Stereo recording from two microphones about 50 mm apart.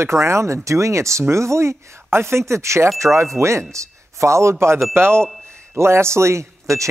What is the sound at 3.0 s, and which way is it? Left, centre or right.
Speech, right.